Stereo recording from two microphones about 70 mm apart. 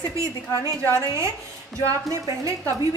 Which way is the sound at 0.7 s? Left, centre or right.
Right.